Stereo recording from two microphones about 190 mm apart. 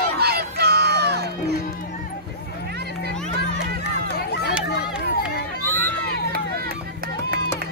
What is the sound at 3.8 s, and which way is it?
Run, 60° left (ahead or behind).